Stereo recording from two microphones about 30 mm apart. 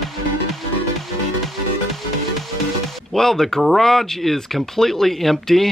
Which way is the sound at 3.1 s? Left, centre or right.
Centre.